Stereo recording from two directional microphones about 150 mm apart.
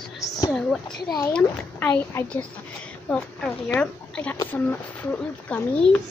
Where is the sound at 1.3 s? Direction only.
15° left (ahead or behind).